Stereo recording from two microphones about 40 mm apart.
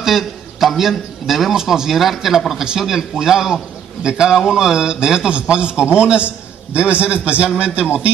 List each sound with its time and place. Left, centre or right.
0.0 s a man's voice: centre; by 7.8 s right